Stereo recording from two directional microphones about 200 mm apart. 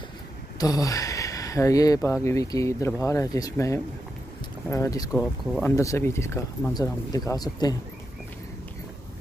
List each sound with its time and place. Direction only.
0.6 s speech: 20° left (ahead or behind)